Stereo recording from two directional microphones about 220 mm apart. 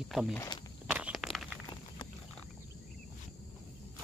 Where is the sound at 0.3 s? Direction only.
15° left (ahead or behind).